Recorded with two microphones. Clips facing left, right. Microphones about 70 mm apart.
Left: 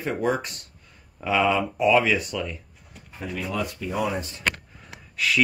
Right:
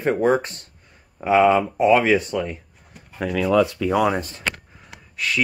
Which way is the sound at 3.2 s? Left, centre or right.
Right.